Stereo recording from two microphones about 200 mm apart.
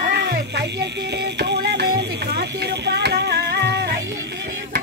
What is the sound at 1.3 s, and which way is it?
Music, 55° right (ahead or behind).